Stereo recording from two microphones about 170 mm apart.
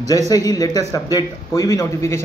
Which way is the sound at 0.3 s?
20° left (ahead or behind).